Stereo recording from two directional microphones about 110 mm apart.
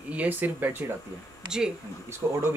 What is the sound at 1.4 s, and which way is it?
Speech, 5° right (ahead or behind).